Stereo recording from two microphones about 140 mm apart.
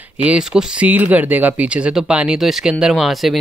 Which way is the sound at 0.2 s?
5° right (ahead or behind).